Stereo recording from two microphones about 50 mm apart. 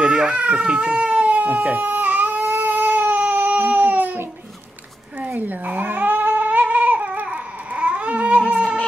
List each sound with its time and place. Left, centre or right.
0.0 s baby cry: centre; by 4.3 s right
5.2 s cat: right